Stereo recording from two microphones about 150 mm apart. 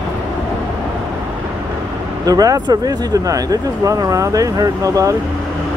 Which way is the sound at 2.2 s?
25° right (ahead or behind).